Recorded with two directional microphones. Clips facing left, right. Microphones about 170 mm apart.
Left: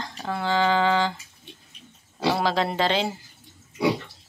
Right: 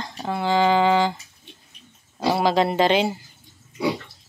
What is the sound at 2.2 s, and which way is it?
Speech, 15° right (ahead or behind).